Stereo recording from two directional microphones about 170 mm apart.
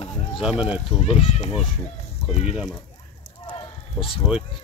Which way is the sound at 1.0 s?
35° left (ahead or behind).